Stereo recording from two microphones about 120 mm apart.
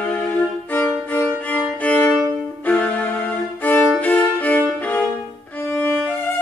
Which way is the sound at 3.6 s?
15° left (ahead or behind).